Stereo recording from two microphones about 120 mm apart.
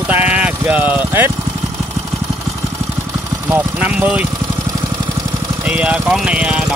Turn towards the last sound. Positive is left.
turn(degrees=-10)  # may be behind; listen again after turning